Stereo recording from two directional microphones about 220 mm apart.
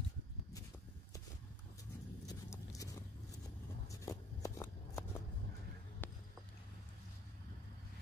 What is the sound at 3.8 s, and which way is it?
Shuffling cards, 15° left (ahead or behind).